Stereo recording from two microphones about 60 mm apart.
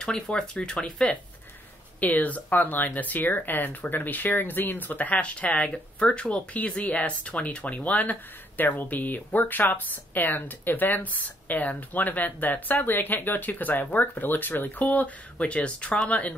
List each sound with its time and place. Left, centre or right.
0.0 s speech: centre
2.0 s speech: left